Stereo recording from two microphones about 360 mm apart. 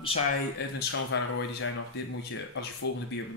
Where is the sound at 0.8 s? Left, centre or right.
Left.